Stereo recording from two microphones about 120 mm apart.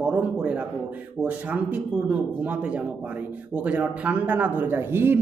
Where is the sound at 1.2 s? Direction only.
10° right (ahead or behind).